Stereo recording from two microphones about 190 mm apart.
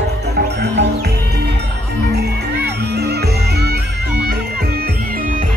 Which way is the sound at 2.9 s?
60° right (ahead or behind).